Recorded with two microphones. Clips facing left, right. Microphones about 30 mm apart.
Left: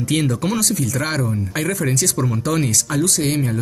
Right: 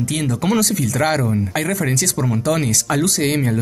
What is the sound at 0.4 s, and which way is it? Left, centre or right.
Speech, centre.